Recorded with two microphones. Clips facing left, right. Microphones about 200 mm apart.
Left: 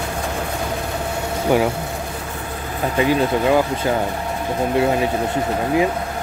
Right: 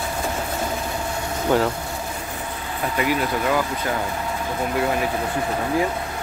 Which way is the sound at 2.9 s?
25° left (ahead or behind).